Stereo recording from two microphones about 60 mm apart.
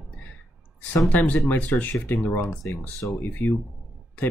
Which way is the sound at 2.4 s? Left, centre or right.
Left.